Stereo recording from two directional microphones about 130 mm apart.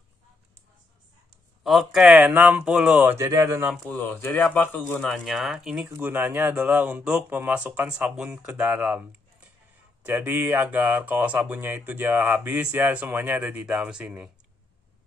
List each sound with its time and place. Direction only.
1.6 s speech: centre (ahead or behind)
3.1 s speech: 25° right (ahead or behind)
3.9 s speech: 15° left (ahead or behind)
4.9 s speech: 5° left (ahead or behind)
5.9 s speech: 15° right (ahead or behind)
10.0 s speech: 15° right (ahead or behind)